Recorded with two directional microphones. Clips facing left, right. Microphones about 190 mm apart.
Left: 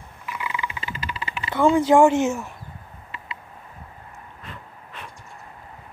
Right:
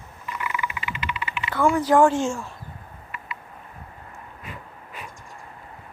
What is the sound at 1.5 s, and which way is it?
Speech, 25° left (ahead or behind).